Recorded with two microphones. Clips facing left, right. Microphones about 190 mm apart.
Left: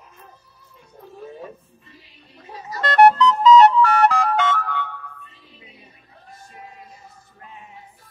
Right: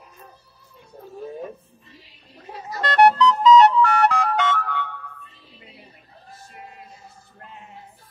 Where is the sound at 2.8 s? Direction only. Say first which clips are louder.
Left 2 dB; 45° left (ahead or behind).